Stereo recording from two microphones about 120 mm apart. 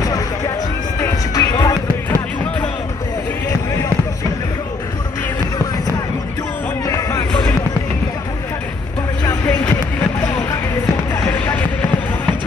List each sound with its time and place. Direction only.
1.3 s music: 30° left (ahead or behind)
6.9 s music: 25° left (ahead or behind)